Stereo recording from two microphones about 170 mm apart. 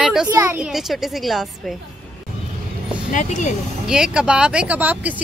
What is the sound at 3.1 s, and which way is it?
Speech, 45° left (ahead or behind).